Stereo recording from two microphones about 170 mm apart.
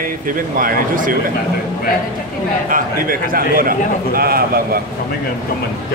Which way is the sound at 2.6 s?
55° right (ahead or behind).